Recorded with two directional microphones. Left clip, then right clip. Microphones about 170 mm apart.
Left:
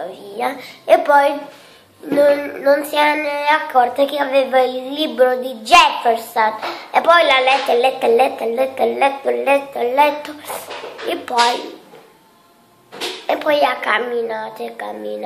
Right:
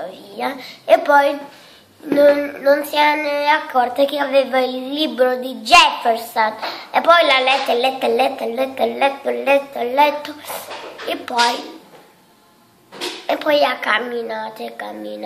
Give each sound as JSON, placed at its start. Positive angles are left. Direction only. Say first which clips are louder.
{"t": 0.0, "sound": "speech", "louder": "left 2 dB", "side_deg": 0}
{"t": 13.3, "sound": "speech", "louder": "even", "side_deg": 0}